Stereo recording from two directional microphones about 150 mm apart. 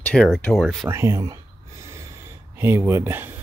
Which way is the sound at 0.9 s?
20° right (ahead or behind).